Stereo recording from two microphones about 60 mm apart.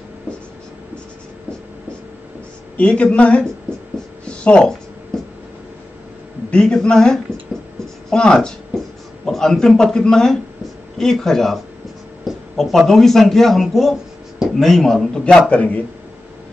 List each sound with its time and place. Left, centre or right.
2.8 s speech: centre
4.2 s a sound: centre
6.5 s a man's voice: centre
15.2 s speech: centre